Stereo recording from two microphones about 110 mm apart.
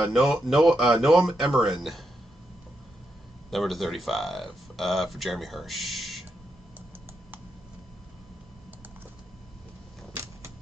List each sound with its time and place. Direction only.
0.0 s speech: centre (ahead or behind)
3.4 s speech: centre (ahead or behind)
10.1 s a sound: 25° right (ahead or behind)